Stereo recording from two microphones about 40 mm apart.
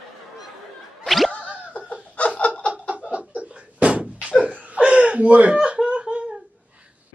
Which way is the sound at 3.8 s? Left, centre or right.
Right.